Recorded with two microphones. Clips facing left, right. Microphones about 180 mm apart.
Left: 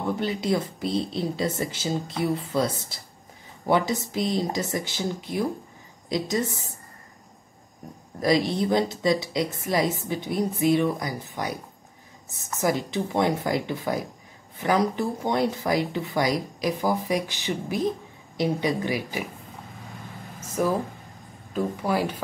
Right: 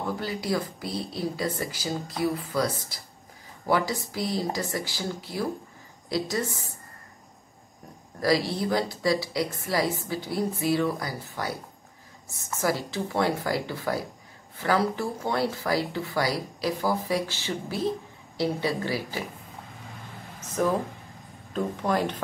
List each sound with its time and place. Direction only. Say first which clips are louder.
0.1 s a woman's voice: left 4 dB; 20° left (ahead or behind)
8.2 s a woman's voice: left 2 dB; 20° left (ahead or behind)
12.5 s a woman's voice: left 3 dB; 20° left (ahead or behind)
20.3 s a sound: left 1 dB; 10° left (ahead or behind)
21.5 s speech: left 1 dB; 10° left (ahead or behind)